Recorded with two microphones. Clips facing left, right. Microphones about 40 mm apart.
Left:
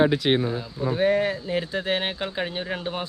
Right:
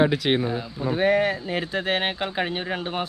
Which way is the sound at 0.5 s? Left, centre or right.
Centre.